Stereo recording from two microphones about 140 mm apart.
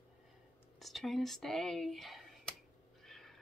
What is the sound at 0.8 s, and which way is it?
Speech, centre (ahead or behind).